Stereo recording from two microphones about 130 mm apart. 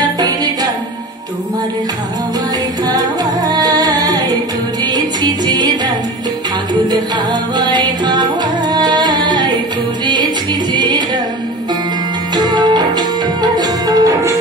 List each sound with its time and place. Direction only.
2.9 s music: 30° right (ahead or behind)
7.5 s music: 35° right (ahead or behind)
10.7 s music: 35° right (ahead or behind)
12.4 s music: 35° right (ahead or behind)